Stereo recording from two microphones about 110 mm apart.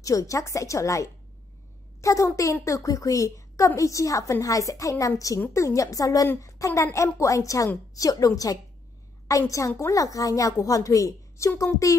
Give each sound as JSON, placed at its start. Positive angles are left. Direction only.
{"t": 0.0, "sound": "a woman's voice", "side_deg": 30}